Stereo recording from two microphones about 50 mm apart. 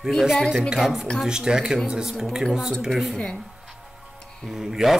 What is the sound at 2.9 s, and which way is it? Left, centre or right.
Speech, centre.